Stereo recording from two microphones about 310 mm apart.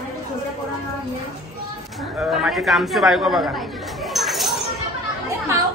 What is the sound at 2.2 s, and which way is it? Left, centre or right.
A woman's voice, centre.